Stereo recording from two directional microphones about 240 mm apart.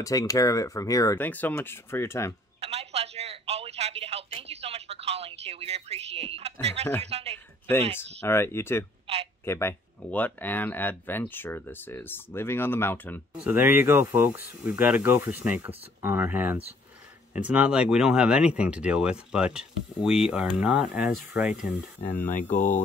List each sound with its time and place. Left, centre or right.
0.0 s speech: centre
2.6 s speech: right
7.9 s speech: centre
9.0 s a sound: right
9.4 s speech: centre
13.4 s speech: centre